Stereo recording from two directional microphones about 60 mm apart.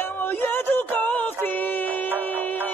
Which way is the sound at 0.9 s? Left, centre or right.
Left.